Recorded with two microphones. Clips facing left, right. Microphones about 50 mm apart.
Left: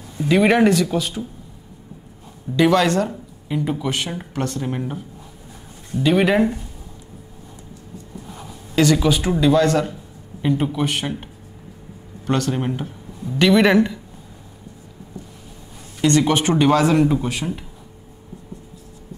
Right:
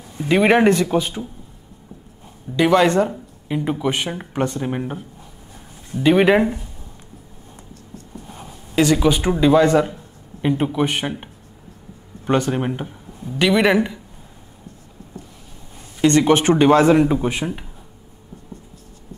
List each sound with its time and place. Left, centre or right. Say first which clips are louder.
0.2 s speech: right 1 dB; right
2.5 s speech: right 1 dB; right
6.0 s speech: right 2 dB; centre
8.9 s speech: right 1 dB; centre
12.3 s speech: right 2 dB; centre
16.1 s speech: right 2 dB; right
16.6 s speech: right 3 dB; centre